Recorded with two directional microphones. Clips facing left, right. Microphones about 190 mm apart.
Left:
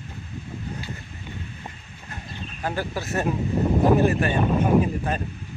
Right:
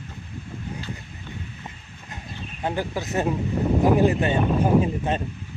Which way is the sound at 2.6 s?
20° right (ahead or behind).